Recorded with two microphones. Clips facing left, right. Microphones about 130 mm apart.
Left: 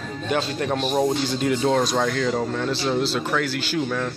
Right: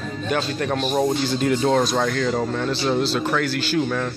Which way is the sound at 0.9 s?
Centre (ahead or behind).